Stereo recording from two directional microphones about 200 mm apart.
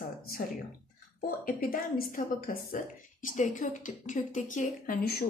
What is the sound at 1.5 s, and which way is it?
A woman's voice, 45° left (ahead or behind).